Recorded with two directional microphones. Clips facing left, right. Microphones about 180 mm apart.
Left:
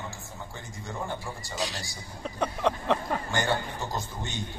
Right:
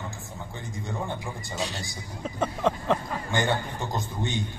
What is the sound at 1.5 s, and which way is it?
Speech, centre (ahead or behind).